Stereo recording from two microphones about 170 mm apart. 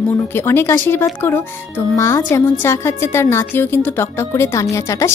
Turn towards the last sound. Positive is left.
turn(degrees=15)  # may be behind; listen again after turning